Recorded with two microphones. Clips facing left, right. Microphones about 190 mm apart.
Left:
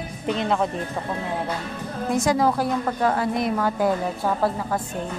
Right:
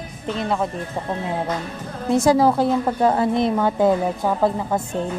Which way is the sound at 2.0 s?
30° right (ahead or behind).